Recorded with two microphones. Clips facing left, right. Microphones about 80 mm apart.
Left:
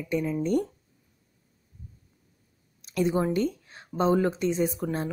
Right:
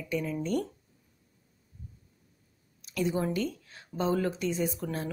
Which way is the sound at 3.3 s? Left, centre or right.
Left.